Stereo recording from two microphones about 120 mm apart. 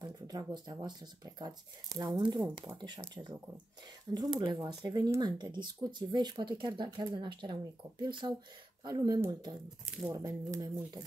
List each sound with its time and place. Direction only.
0.0 s speech: 35° right (ahead or behind)
4.4 s speech: 35° right (ahead or behind)